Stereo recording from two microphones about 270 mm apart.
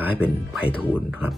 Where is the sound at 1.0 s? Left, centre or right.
Centre.